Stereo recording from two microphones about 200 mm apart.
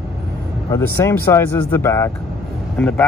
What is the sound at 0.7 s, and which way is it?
Speech, 15° left (ahead or behind).